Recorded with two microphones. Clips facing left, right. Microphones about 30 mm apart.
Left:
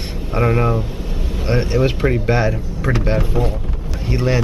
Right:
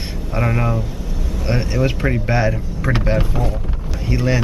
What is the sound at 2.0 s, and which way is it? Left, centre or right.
Speech, centre.